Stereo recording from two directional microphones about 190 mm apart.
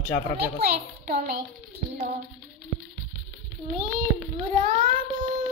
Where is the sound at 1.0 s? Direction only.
45° right (ahead or behind).